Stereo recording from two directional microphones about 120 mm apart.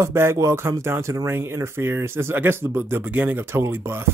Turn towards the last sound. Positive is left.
turn(degrees=-20)  # may be behind; listen again after turning